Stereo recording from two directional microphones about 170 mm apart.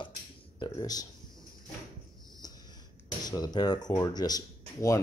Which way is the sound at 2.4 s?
25° left (ahead or behind).